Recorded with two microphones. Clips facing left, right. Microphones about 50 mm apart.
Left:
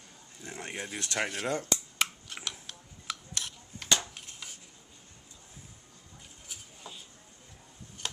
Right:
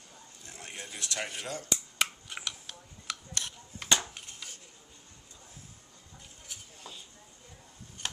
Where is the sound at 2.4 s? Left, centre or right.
Centre.